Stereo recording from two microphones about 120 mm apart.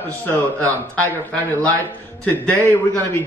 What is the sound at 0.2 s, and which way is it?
Speech, 15° left (ahead or behind).